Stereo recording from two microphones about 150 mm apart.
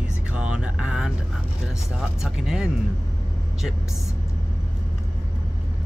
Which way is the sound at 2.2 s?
5° right (ahead or behind).